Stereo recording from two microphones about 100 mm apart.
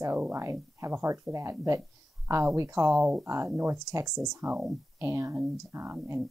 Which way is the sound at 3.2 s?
25° right (ahead or behind).